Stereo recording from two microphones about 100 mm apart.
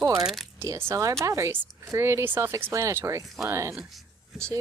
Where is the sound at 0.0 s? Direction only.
45° right (ahead or behind).